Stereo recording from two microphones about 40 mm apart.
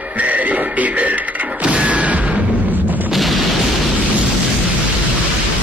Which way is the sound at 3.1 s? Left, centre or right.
Centre.